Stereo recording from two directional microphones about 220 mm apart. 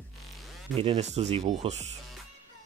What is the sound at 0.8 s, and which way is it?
Speech, 30° right (ahead or behind).